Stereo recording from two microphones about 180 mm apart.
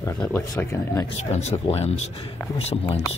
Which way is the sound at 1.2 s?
40° left (ahead or behind).